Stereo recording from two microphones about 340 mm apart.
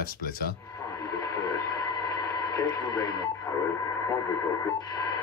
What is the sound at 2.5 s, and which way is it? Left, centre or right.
Speech, centre.